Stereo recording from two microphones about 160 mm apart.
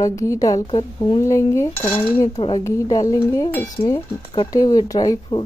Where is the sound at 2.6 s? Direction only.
20° left (ahead or behind).